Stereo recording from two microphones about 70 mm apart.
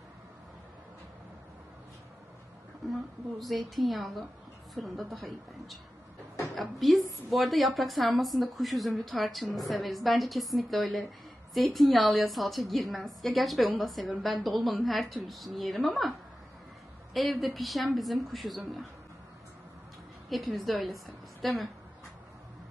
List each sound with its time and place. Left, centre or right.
2.9 s a woman's voice: centre
20.2 s a woman's voice: centre